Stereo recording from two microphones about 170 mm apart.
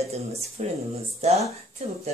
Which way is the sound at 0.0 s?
40° right (ahead or behind).